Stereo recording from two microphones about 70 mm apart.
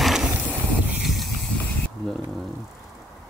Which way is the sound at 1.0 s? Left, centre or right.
Centre.